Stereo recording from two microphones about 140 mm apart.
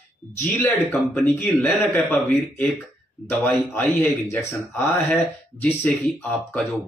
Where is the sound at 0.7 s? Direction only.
15° left (ahead or behind).